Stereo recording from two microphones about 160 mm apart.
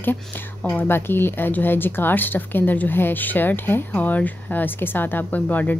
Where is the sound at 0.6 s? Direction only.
15° left (ahead or behind).